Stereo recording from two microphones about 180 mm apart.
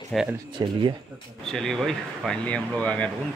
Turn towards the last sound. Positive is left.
turn(degrees=5)  # may be behind; listen again after turning